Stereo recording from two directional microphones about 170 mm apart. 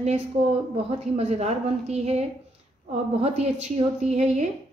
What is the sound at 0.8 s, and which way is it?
A woman's voice, 40° right (ahead or behind).